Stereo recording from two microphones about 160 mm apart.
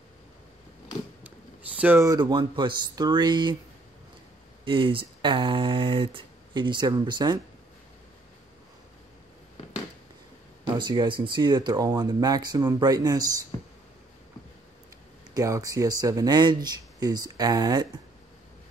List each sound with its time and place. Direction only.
1.8 s speech: 10° right (ahead or behind)
2.0 s speech: 25° right (ahead or behind)
4.6 s speech: 30° right (ahead or behind)
10.6 s speech: 25° right (ahead or behind)
15.3 s speech: 20° right (ahead or behind)